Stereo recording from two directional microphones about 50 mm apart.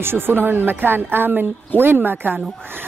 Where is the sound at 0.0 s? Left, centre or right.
Right.